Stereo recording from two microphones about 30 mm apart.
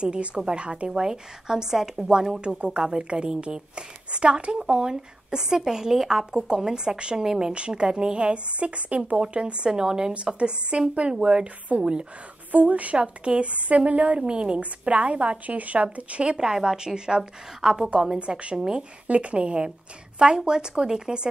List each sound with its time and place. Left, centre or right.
0.0 s a woman's voice: right
0.9 s speech: right
2.4 s a woman's voice: right
4.6 s speech: right
7.5 s a woman's voice: right
9.2 s a woman's voice: right
9.7 s speech: right
10.1 s a woman's voice: right
12.4 s a woman's voice: right
12.9 s a woman's voice: right
14.2 s a woman's voice: right
14.6 s a woman's voice: right
16.3 s speech: centre
18.2 s a woman's voice: right